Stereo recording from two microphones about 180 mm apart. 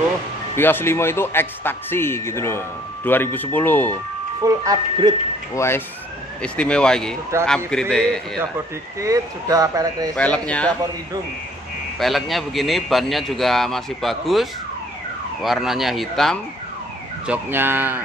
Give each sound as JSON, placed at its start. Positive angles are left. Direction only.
{"t": 0.6, "sound": "a man's voice", "side_deg": 10}
{"t": 4.5, "sound": "speech", "side_deg": -20}
{"t": 5.5, "sound": "a man's voice", "side_deg": 15}
{"t": 9.0, "sound": "speech", "side_deg": -20}
{"t": 10.1, "sound": "a man's voice", "side_deg": 5}
{"t": 12.0, "sound": "a man's voice", "side_deg": 0}
{"t": 17.3, "sound": "speech", "side_deg": -10}